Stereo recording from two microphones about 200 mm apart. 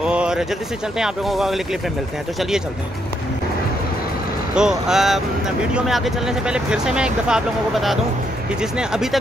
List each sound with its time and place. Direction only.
0.0 s a sound: 5° right (ahead or behind)
0.9 s speech: centre (ahead or behind)
4.6 s speech: 5° right (ahead or behind)